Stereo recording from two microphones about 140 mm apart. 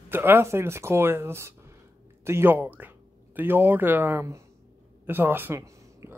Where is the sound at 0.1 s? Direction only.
15° right (ahead or behind).